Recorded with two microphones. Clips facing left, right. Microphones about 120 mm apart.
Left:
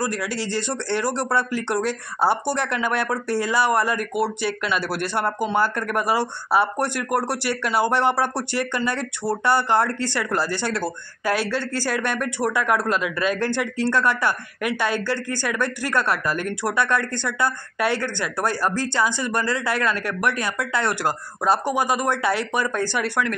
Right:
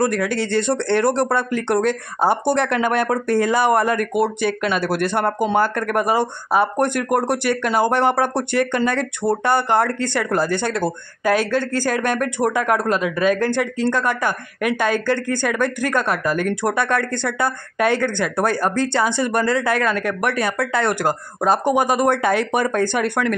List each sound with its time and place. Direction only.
0.0 s a woman's voice: 55° right (ahead or behind)